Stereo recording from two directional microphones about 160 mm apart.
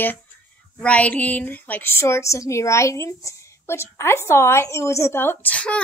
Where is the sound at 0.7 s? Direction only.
10° left (ahead or behind).